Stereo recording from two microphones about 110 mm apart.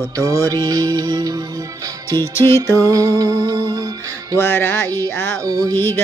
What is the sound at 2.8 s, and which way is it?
Music, 30° right (ahead or behind).